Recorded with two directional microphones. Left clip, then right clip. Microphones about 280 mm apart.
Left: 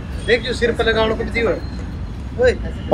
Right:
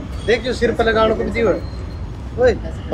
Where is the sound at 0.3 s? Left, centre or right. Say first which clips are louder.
Even; right.